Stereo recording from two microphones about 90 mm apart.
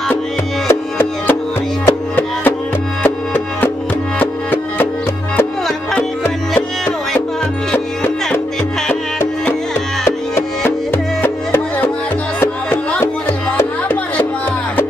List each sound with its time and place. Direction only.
0.7 s music: 25° left (ahead or behind)
7.7 s music: 15° left (ahead or behind)
10.9 s music: 25° left (ahead or behind)
12.4 s music: 15° left (ahead or behind)